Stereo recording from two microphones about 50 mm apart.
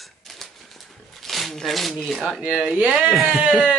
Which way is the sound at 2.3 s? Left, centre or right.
Centre.